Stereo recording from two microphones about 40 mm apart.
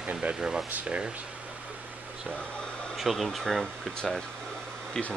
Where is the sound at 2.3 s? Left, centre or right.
Left.